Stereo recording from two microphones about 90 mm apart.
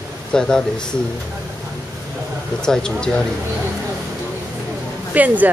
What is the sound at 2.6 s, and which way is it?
Speech, 10° left (ahead or behind).